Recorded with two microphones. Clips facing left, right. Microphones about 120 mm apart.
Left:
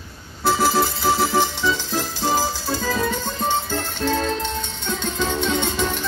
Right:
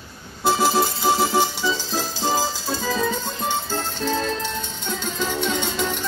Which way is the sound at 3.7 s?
15° left (ahead or behind).